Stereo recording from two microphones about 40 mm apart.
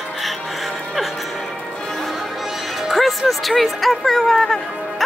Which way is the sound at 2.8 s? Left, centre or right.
Centre.